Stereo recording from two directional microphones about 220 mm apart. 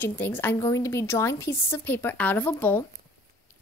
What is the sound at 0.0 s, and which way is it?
A woman's voice, 10° left (ahead or behind).